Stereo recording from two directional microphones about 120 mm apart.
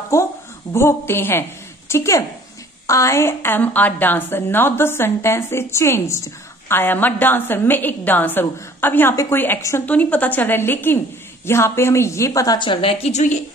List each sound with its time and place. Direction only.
0.1 s a woman's voice: 25° left (ahead or behind)
12.5 s a woman's voice: 45° left (ahead or behind); by 13.4 s 80° left